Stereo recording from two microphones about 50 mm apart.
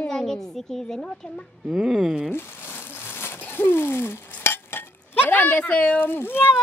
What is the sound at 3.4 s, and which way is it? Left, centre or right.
Speech, left.